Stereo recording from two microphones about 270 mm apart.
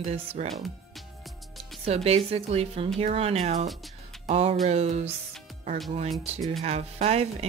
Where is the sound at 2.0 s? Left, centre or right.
Right.